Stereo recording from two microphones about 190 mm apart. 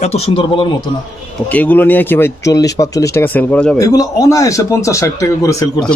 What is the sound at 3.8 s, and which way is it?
Speech, 20° left (ahead or behind).